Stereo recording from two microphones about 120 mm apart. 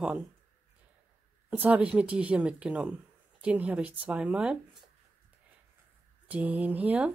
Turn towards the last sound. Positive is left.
turn(degrees=-10)  # may be behind; listen again after turning